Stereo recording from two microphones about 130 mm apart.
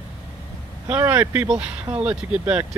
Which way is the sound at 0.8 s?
15° right (ahead or behind).